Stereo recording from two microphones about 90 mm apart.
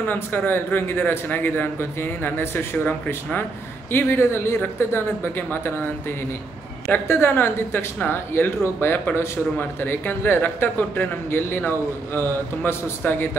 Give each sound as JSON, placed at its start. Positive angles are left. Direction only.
{"t": 0.0, "sound": "speech", "side_deg": 20}
{"t": 6.9, "sound": "speech", "side_deg": 25}